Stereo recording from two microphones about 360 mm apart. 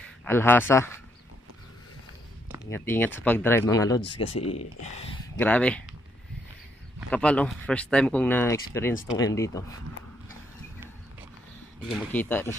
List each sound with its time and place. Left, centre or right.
0.2 s speech: centre
2.7 s speech: centre
5.4 s speech: centre
7.0 s speech: centre
11.9 s speech: centre